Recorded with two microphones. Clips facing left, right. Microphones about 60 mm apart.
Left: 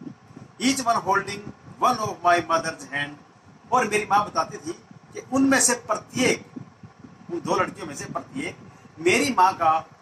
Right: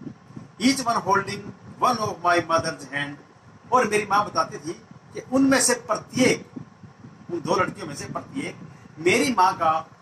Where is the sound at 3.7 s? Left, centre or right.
Right.